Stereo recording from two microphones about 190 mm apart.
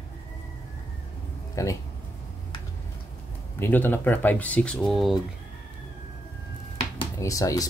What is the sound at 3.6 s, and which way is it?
Speech, 10° left (ahead or behind).